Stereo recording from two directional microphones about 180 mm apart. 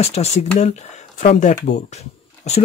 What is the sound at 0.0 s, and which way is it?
Speech, 35° left (ahead or behind).